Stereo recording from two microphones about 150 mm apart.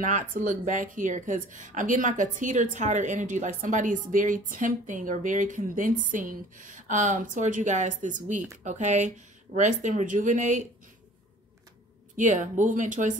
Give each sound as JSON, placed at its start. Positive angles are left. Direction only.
{"t": 0.0, "sound": "speech", "side_deg": -55}
{"t": 12.2, "sound": "speech", "side_deg": -55}